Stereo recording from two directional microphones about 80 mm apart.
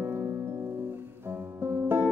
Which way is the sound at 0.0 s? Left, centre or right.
Right.